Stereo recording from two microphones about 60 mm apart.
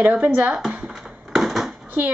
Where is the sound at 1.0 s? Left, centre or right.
Centre.